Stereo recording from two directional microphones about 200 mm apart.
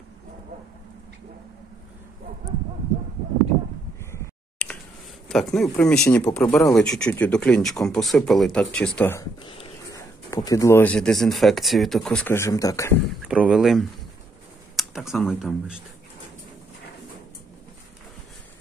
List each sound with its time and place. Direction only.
4.0 s a sound: 15° left (ahead or behind)
5.3 s speech: centre (ahead or behind)
9.4 s dog: 25° left (ahead or behind)
10.3 s speech: 15° left (ahead or behind)
13.2 s speech: 5° right (ahead or behind)